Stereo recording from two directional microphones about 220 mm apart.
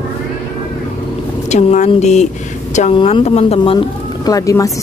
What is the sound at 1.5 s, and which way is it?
Speech, 30° left (ahead or behind).